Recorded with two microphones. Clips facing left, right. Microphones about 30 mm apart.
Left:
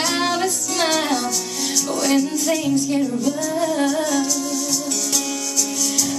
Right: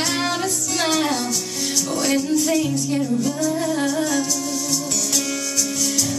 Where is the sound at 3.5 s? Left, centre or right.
Centre.